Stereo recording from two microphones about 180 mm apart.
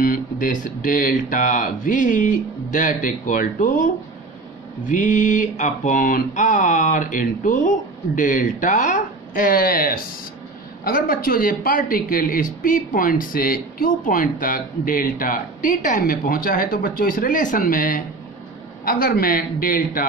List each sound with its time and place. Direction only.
0.0 s speech: 50° left (ahead or behind)